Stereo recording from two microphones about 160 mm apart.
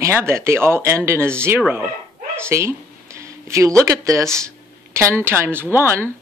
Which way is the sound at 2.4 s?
15° right (ahead or behind).